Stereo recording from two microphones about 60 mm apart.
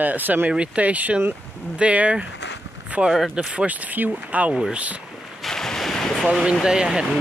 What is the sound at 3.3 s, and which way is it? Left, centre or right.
Speech, centre.